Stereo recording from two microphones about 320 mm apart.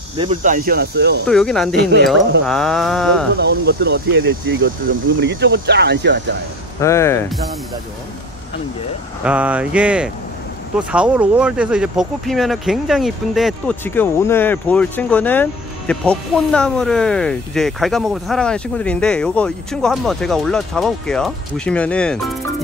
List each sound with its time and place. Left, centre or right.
0.2 s speech: right
1.2 s speech: centre
1.8 s speech: right
2.4 s speech: centre
3.3 s speech: right
6.8 s speech: centre
9.2 s speech: centre